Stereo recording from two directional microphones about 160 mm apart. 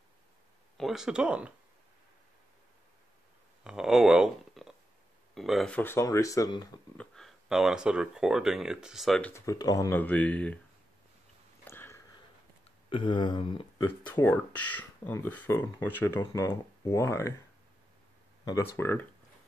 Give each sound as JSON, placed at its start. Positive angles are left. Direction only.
{"t": 0.7, "sound": "speech", "side_deg": 0}
{"t": 3.6, "sound": "speech", "side_deg": -5}
{"t": 7.0, "sound": "speech", "side_deg": 0}
{"t": 9.3, "sound": "speech", "side_deg": 20}
{"t": 11.6, "sound": "a sound", "side_deg": 15}
{"t": 12.9, "sound": "speech", "side_deg": 30}
{"t": 13.7, "sound": "speech", "side_deg": 15}
{"t": 18.4, "sound": "speech", "side_deg": 20}